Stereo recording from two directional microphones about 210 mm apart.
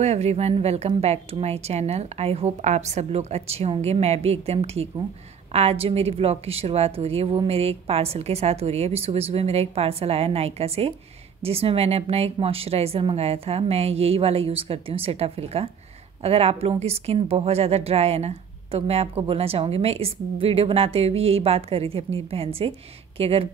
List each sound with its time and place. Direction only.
0.0 s a woman's voice: 30° right (ahead or behind)